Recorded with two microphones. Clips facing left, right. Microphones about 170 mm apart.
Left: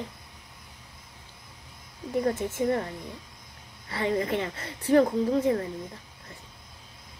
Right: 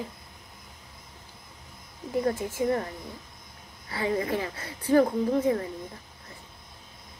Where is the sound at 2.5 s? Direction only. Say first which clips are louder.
Even; 25° left (ahead or behind).